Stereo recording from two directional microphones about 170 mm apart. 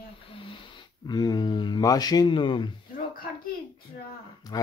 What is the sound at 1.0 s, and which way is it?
Speech, 25° left (ahead or behind).